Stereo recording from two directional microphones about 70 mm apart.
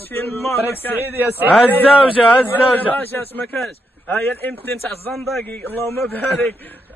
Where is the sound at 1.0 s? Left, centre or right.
Right.